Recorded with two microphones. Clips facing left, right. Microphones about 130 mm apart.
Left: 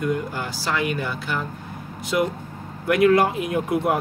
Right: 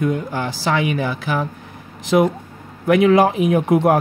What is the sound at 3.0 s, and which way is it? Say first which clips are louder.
Speech: right 2 dB; 90° right.